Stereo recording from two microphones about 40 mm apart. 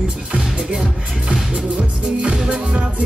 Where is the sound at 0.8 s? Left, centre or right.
Centre.